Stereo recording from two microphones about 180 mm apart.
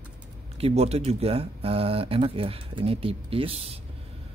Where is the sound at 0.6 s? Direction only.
35° right (ahead or behind).